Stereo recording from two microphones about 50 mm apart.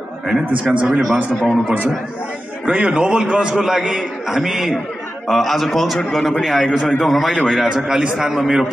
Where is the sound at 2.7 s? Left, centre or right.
Right.